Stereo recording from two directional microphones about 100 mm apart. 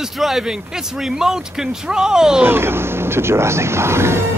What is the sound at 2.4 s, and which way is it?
Speech, 25° right (ahead or behind).